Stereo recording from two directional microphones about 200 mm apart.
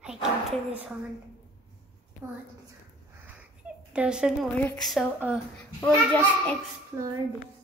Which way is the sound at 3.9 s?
5° right (ahead or behind).